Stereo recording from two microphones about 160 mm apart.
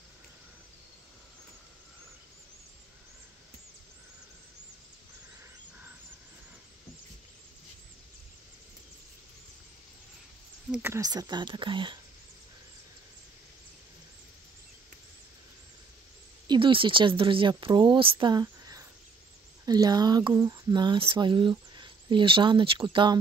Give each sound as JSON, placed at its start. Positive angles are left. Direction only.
{"t": 10.7, "sound": "speech", "side_deg": -15}
{"t": 16.4, "sound": "speech", "side_deg": -30}